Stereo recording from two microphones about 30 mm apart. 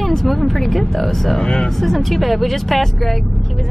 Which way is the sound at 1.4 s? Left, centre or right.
Left.